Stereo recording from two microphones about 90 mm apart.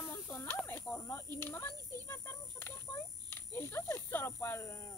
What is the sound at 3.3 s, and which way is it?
Speech, 25° left (ahead or behind).